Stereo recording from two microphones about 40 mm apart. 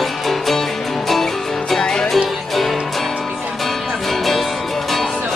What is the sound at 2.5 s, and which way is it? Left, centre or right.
Music, centre.